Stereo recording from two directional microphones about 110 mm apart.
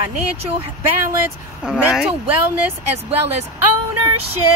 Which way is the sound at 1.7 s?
10° right (ahead or behind).